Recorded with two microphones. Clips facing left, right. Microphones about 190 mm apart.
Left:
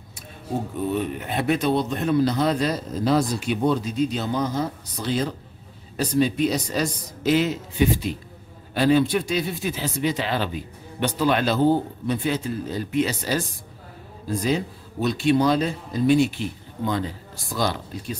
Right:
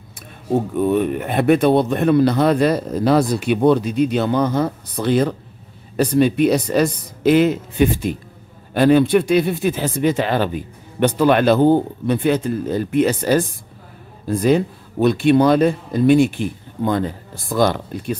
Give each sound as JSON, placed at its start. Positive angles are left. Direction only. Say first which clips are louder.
{"t": 0.7, "sound": "speech", "louder": "right 7 dB", "side_deg": -60}